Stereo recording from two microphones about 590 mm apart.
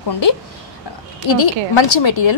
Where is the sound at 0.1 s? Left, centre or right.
Left.